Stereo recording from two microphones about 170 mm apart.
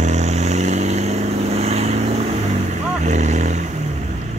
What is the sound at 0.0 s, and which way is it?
Vehicle, 45° right (ahead or behind).